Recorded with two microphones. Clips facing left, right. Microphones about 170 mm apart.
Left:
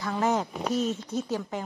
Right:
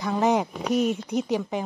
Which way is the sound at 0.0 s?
15° right (ahead or behind).